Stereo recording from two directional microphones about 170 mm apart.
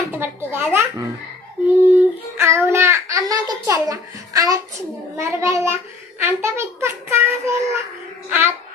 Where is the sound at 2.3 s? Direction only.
15° right (ahead or behind).